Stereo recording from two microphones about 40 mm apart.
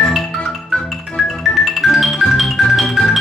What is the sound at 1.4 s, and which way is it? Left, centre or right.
Music, centre.